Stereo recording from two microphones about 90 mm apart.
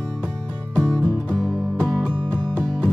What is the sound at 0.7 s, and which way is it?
Music, 10° left (ahead or behind).